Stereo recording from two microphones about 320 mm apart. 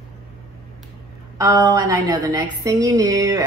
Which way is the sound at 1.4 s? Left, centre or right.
Centre.